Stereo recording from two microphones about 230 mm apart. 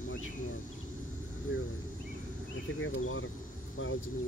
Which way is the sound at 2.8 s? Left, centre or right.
Left.